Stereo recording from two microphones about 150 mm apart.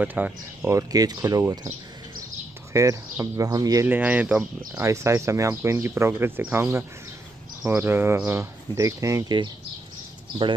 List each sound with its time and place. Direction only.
0.0 s speech: 10° right (ahead or behind)
0.7 s speech: 25° right (ahead or behind)
2.7 s speech: 20° right (ahead or behind)
3.8 s speech: 10° right (ahead or behind)